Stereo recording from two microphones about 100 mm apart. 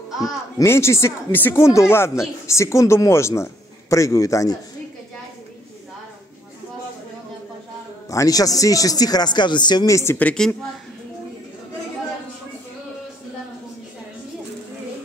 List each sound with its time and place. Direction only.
0.7 s speech: 25° left (ahead or behind)
8.1 s speech: 35° left (ahead or behind)
9.8 s speech: 30° left (ahead or behind)
10.1 s a woman's voice: 10° left (ahead or behind)